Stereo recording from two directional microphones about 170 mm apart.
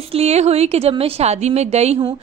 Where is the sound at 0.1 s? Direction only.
40° right (ahead or behind).